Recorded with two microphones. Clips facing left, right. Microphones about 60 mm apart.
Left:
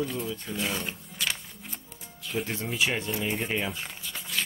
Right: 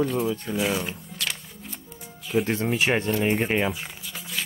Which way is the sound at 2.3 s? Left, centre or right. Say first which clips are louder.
Right 8 dB; centre.